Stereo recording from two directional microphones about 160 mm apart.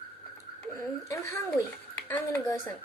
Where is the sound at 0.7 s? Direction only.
20° left (ahead or behind).